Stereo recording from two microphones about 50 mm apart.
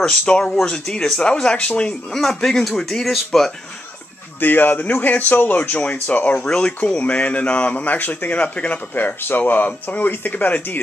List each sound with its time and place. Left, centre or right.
0.4 s speech: centre
2.1 s speech: centre
4.4 s speech: left
8.9 s speech: left